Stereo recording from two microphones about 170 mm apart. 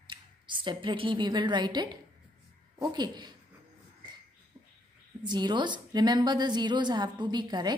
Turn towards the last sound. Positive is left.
turn(degrees=-25)  # may be behind; listen again after turning